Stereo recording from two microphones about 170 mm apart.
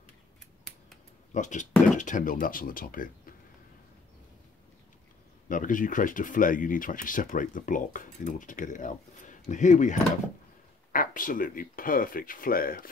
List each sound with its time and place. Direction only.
1.3 s speech: 45° left (ahead or behind)
5.5 s speech: 50° left (ahead or behind)